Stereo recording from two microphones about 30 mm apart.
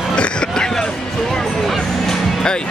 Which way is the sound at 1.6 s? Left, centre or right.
Centre.